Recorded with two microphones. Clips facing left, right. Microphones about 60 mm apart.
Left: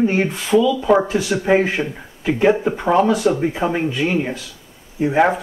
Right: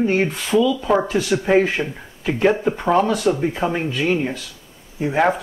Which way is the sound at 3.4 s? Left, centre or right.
Centre.